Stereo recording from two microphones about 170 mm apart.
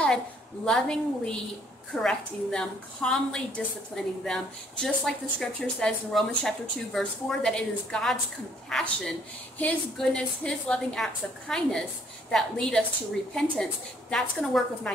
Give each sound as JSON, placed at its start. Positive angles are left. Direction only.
{"t": 0.7, "sound": "a woman's voice", "side_deg": 5}